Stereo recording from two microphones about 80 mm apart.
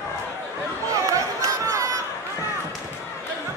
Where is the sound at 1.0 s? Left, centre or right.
Right.